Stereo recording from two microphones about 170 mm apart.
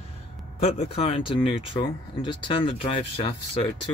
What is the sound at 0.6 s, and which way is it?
Speech, 35° left (ahead or behind).